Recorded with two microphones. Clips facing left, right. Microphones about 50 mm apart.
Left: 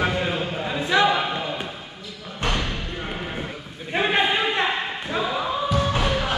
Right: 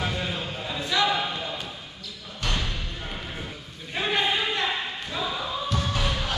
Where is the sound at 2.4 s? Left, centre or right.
Left.